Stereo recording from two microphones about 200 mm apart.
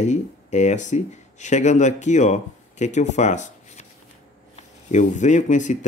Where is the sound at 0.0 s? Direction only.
35° left (ahead or behind).